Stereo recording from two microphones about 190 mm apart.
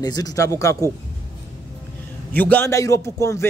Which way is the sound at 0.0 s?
20° left (ahead or behind).